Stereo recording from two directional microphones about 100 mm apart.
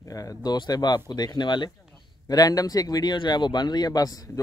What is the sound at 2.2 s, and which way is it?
Speech, 40° left (ahead or behind).